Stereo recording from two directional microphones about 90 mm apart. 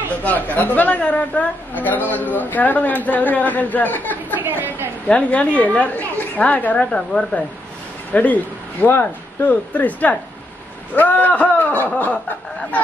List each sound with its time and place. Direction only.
0.2 s a woman's voice: 20° left (ahead or behind)
4.4 s a woman's voice: 20° right (ahead or behind)
5.0 s a woman's voice: 15° left (ahead or behind)